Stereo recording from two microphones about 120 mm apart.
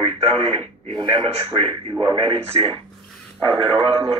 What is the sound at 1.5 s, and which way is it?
Speech, 50° right (ahead or behind).